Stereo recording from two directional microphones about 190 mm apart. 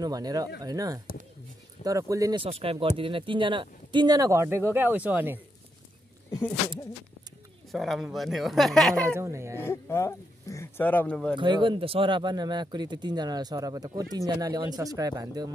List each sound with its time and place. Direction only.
0.0 s speech: 20° right (ahead or behind)
2.4 s speech: 30° right (ahead or behind); by 5.4 s 10° right (ahead or behind)
7.7 s speech: centre (ahead or behind)
9.1 s speech: 15° right (ahead or behind)
9.6 s speech: 10° left (ahead or behind)
11.3 s speech: 25° right (ahead or behind)